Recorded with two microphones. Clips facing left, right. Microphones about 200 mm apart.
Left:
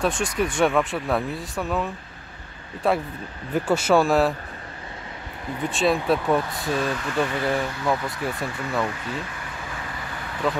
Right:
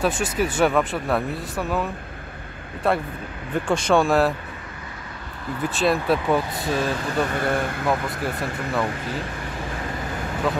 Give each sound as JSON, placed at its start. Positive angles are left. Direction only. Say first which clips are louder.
{"t": 0.0, "sound": "speech", "louder": "right 1 dB", "side_deg": -5}
{"t": 5.7, "sound": "speech", "louder": "even", "side_deg": 0}
{"t": 6.9, "sound": "speech", "louder": "right 2 dB", "side_deg": -35}
{"t": 7.2, "sound": "speech", "louder": "right 1 dB", "side_deg": -50}
{"t": 8.2, "sound": "speech", "louder": "right 1 dB", "side_deg": 0}